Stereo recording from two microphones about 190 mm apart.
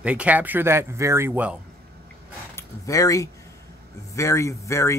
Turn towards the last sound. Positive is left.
turn(degrees=15)  # may be behind; listen again after turning